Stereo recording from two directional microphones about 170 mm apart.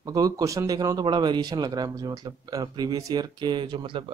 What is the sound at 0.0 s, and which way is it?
Speech, 20° right (ahead or behind).